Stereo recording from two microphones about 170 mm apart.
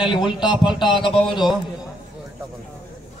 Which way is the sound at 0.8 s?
25° left (ahead or behind).